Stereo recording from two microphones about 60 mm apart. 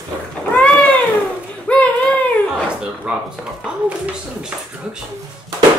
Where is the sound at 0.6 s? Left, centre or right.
Left.